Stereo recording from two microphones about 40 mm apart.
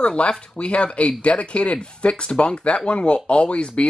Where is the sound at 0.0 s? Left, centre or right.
Left.